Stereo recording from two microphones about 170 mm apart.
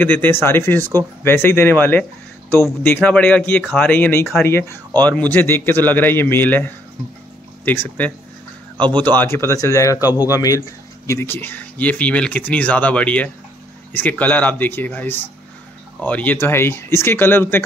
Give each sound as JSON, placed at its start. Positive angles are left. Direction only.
{"t": 0.0, "sound": "a man's voice", "side_deg": 10}
{"t": 8.7, "sound": "speech", "side_deg": -25}
{"t": 9.0, "sound": "a man's voice", "side_deg": 10}
{"t": 10.0, "sound": "speech", "side_deg": -10}
{"t": 10.3, "sound": "a man's voice", "side_deg": 20}